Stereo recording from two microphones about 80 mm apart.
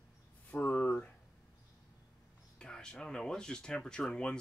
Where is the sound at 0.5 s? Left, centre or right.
Left.